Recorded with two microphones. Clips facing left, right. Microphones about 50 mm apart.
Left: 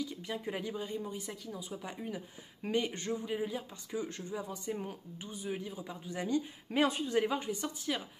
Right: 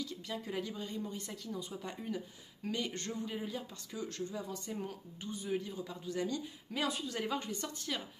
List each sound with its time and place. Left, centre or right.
0.0 s speech: centre
2.6 s speech: left
3.0 s speech: centre; by 7.2 s left
7.2 s speech: centre